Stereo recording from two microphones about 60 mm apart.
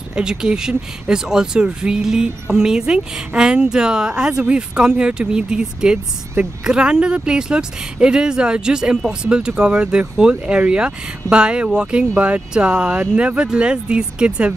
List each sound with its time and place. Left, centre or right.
0.1 s speech: centre